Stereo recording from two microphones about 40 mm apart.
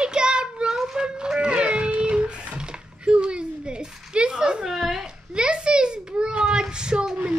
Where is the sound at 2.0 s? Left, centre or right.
Right.